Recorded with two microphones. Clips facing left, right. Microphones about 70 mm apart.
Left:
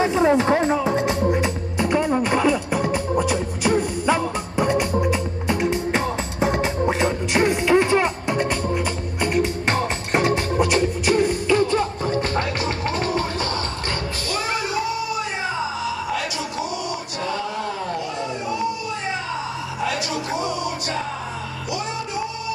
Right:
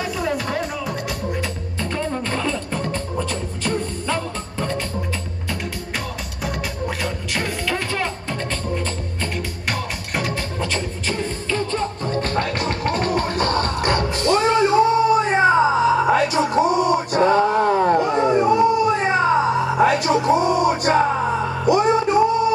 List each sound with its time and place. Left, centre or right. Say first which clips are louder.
0.0 s music: left 7 dB; left
12.5 s music: right 2 dB; right